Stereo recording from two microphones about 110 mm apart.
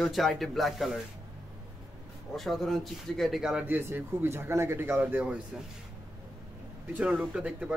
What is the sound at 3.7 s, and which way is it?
Speech, 20° right (ahead or behind).